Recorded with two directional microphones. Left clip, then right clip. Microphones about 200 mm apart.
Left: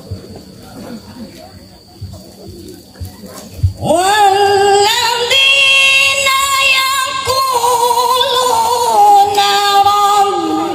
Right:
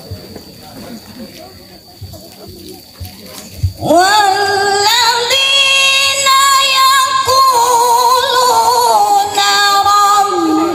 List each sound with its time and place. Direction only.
3.8 s female singing: 25° right (ahead or behind)